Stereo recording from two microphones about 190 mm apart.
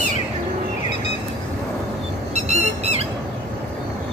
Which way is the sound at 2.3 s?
35° right (ahead or behind).